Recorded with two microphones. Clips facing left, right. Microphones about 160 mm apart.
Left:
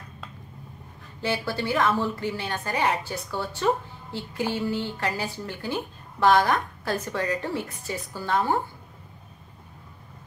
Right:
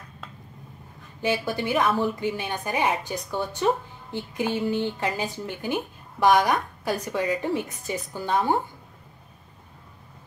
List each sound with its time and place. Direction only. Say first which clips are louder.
1.2 s a woman's voice: right 2 dB; 15° right (ahead or behind)